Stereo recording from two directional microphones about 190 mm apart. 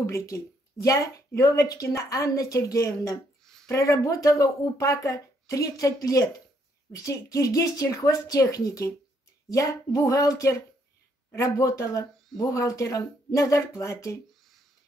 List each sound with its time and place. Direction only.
0.0 s speech: 15° left (ahead or behind)